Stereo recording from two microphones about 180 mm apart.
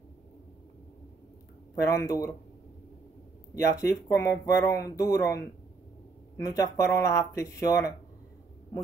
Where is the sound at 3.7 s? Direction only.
15° left (ahead or behind).